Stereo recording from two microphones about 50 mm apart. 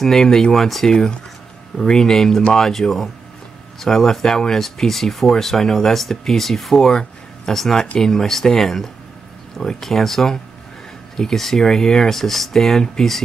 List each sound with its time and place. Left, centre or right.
0.0 s speech: centre